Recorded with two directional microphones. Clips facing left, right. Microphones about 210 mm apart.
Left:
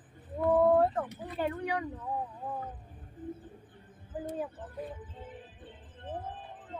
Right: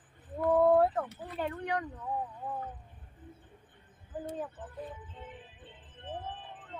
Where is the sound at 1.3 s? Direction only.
5° left (ahead or behind).